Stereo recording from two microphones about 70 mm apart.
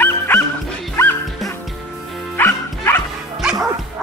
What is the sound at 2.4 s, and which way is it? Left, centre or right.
Music, left.